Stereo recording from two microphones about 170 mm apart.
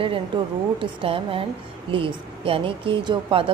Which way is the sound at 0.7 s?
30° right (ahead or behind).